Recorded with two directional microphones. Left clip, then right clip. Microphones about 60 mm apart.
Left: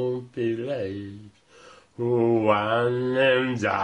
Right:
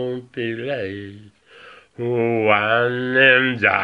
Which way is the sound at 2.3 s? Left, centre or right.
Centre.